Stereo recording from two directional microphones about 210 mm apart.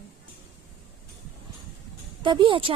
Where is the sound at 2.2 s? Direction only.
25° right (ahead or behind).